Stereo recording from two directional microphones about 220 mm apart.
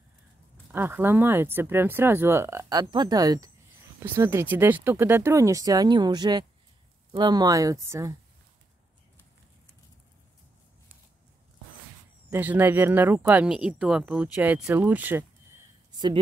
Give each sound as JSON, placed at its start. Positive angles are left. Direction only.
{"t": 0.7, "sound": "speech", "side_deg": -10}
{"t": 12.3, "sound": "speech", "side_deg": -10}